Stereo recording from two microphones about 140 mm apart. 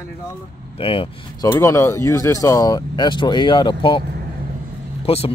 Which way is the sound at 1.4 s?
20° left (ahead or behind).